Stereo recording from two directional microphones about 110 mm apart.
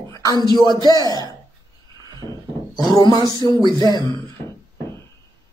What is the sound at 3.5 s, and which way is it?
Speech, 40° left (ahead or behind).